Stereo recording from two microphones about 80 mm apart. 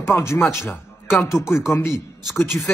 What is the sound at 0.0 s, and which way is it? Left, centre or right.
Speech, left.